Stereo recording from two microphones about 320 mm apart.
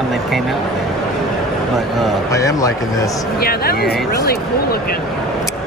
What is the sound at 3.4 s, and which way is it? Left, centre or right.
Speech, left.